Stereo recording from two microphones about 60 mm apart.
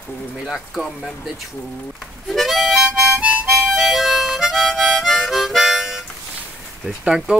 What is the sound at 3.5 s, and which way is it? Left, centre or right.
Harmonica, centre.